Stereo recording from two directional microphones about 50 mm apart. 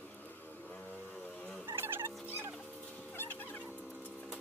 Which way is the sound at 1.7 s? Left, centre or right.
Right.